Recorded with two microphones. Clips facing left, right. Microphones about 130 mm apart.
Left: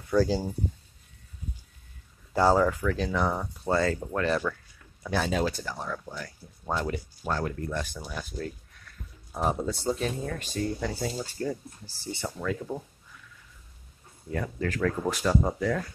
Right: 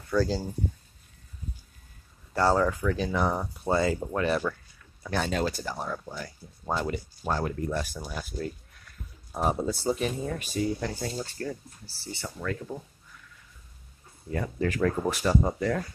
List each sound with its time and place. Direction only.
0.1 s speech: 15° left (ahead or behind)
2.3 s speech: 15° left (ahead or behind)
2.6 s speech: 5° right (ahead or behind)
5.0 s speech: centre (ahead or behind)
5.6 s speech: 15° right (ahead or behind)
7.3 s speech: 15° right (ahead or behind); by 11.3 s 5° left (ahead or behind)
12.0 s speech: 20° left (ahead or behind)
14.6 s speech: 20° right (ahead or behind)
15.0 s speech: centre (ahead or behind)